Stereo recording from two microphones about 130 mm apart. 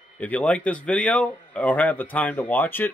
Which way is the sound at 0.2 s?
10° left (ahead or behind).